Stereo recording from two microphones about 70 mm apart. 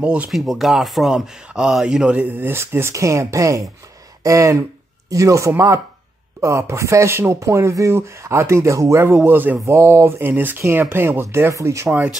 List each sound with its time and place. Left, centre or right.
0.0 s speech: centre
0.3 s speech: centre
2.1 s speech: right
9.0 s speech: right
9.6 s speech: right